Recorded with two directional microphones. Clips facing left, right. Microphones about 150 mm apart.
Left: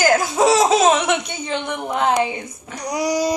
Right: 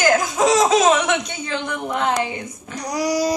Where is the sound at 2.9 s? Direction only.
20° left (ahead or behind).